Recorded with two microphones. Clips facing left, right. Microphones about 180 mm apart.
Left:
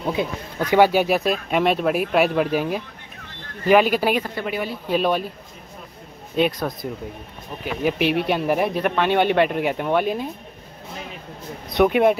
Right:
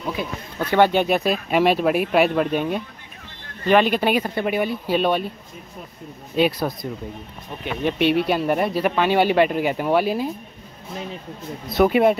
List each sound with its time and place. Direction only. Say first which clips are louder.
0.0 s speech: left 4 dB; 25° left (ahead or behind)
0.6 s speech: left 1 dB; 10° left (ahead or behind)
4.2 s speech: right 4 dB; 20° right (ahead or behind)
4.8 s speech: left 3 dB; centre (ahead or behind)
6.3 s speech: right 1 dB; centre (ahead or behind)
11.7 s speech: even; centre (ahead or behind)